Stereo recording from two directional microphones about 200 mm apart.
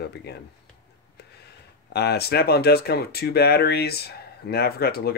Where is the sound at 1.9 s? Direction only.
55° left (ahead or behind).